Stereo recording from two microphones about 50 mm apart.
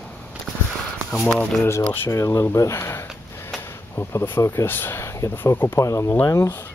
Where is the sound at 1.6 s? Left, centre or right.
Left.